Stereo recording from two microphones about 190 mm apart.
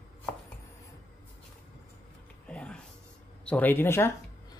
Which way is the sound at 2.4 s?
5° left (ahead or behind).